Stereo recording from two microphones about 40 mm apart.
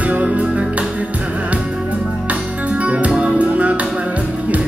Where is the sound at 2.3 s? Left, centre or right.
Right.